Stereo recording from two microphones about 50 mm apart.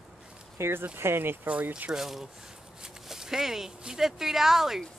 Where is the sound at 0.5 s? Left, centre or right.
Right.